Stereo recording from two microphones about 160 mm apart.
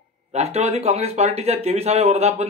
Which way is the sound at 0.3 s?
40° right (ahead or behind).